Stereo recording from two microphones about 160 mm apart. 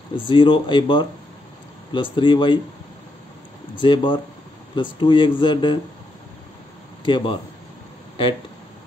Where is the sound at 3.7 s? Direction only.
30° left (ahead or behind).